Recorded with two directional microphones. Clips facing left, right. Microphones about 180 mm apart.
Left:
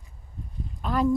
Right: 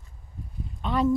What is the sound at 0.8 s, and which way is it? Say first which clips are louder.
Speech: even; centre (ahead or behind).